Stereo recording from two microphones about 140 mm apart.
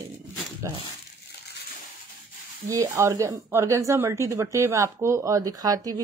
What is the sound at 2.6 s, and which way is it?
Speech, 25° right (ahead or behind).